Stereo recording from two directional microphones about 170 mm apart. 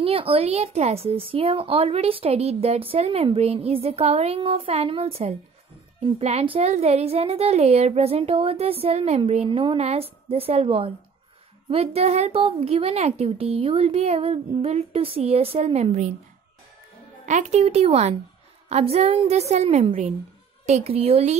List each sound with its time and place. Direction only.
0.0 s a woman's voice: 35° right (ahead or behind)
17.3 s a woman's voice: 45° right (ahead or behind)